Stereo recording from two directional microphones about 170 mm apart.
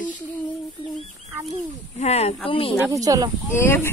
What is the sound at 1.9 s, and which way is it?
Speech, 40° left (ahead or behind).